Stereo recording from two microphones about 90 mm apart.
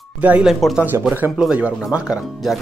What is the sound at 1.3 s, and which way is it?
Speech, 10° right (ahead or behind).